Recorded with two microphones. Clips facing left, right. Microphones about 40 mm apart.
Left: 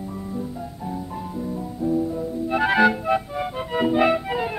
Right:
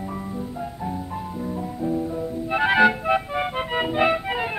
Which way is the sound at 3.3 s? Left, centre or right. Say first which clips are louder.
Right 2 dB; right.